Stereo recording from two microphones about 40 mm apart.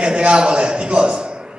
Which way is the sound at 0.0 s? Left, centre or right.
Right.